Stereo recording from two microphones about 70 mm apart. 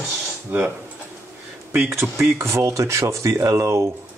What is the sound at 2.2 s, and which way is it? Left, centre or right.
Speech, right.